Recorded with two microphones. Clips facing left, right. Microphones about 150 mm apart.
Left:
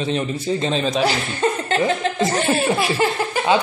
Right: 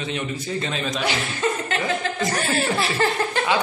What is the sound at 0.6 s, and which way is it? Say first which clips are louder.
Speech: left 7 dB; 30° left (ahead or behind).